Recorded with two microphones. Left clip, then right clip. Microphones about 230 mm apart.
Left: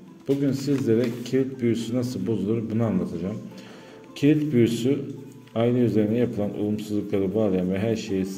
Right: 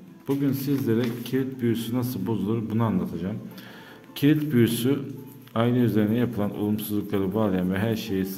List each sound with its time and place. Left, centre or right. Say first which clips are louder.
0.4 s a man's voice: left 2 dB; centre
4.2 s a man's voice: left 1 dB; centre